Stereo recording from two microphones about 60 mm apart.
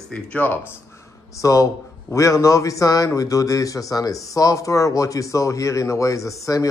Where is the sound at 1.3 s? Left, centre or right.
Left.